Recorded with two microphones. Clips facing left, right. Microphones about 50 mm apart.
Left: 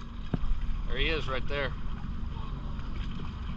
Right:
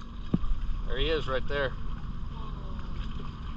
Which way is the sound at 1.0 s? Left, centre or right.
Left.